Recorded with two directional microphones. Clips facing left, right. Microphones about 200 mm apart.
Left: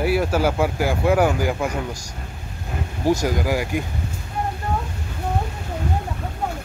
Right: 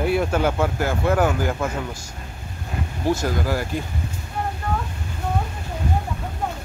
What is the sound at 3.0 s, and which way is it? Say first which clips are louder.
Speech: left 2 dB; 10° left (ahead or behind).